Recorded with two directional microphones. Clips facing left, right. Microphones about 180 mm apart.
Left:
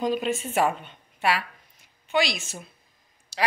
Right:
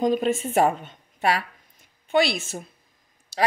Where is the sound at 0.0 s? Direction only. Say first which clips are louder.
Right 4 dB; 45° right (ahead or behind).